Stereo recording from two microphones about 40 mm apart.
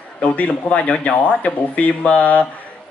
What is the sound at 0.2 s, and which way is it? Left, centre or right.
A man's voice, left.